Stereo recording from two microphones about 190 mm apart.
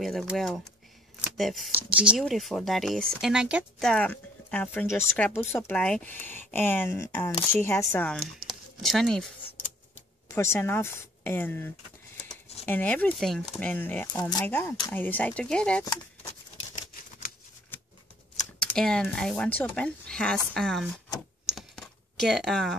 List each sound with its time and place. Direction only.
0.0 s speech: centre (ahead or behind)
3.9 s speech: 5° left (ahead or behind)
10.3 s speech: 15° left (ahead or behind)
17.7 s scissors: 10° left (ahead or behind)
18.6 s speech: 5° left (ahead or behind)
21.5 s computer keyboard: centre (ahead or behind)